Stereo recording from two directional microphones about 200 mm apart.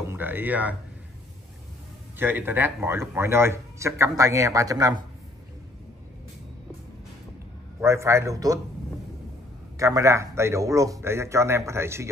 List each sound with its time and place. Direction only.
0.1 s a sound: 10° right (ahead or behind)
2.1 s a man's voice: 10° right (ahead or behind)
7.8 s a man's voice: 15° right (ahead or behind)
9.8 s a man's voice: 15° right (ahead or behind)